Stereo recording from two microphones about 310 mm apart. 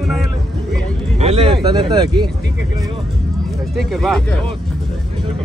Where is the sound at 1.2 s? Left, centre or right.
Centre.